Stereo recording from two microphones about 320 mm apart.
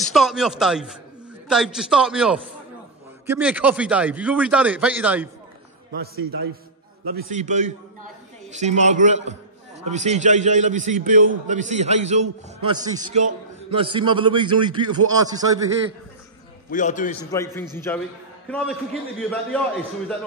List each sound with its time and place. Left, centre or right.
0.0 s a man's voice: centre
5.9 s a man's voice: right; by 15.7 s centre
16.7 s a man's voice: left
17.3 s a man's voice: centre